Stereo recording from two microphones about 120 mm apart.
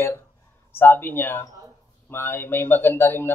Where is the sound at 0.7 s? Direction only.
15° left (ahead or behind).